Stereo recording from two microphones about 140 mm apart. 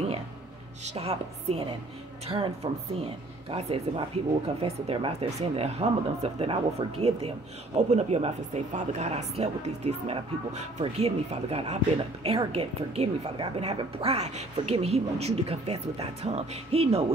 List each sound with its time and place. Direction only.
0.8 s speech: 50° right (ahead or behind)